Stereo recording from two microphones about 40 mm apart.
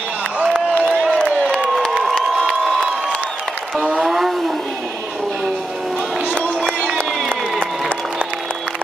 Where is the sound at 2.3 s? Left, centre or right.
Centre.